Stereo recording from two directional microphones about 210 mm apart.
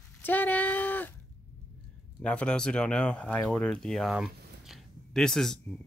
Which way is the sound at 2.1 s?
5° left (ahead or behind).